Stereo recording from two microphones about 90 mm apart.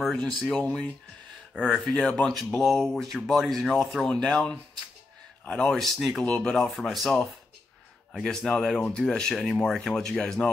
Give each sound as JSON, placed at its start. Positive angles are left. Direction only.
{"t": 0.0, "sound": "speech", "side_deg": 0}
{"t": 1.9, "sound": "speech", "side_deg": 10}
{"t": 5.8, "sound": "speech", "side_deg": 0}
{"t": 6.2, "sound": "speech", "side_deg": 15}